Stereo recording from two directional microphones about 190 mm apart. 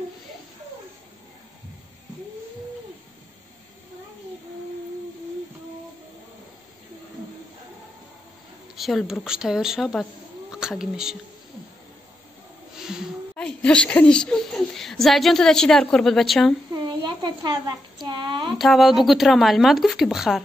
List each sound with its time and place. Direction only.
8.7 s speech: centre (ahead or behind)
12.7 s a woman's voice: 5° right (ahead or behind)
16.7 s a sound: 20° right (ahead or behind)
18.6 s speech: centre (ahead or behind)